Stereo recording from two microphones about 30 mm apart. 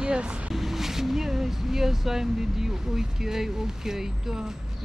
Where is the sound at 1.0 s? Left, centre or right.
Centre.